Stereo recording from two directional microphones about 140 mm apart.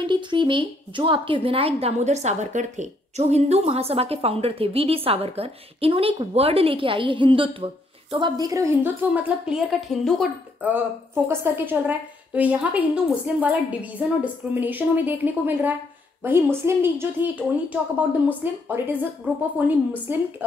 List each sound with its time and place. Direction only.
0.0 s a woman's voice: 35° right (ahead or behind)
9.1 s a woman's voice: 5° right (ahead or behind)
11.2 s a woman's voice: 15° right (ahead or behind)